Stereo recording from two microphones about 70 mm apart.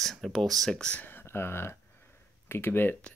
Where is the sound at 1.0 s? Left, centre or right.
Left.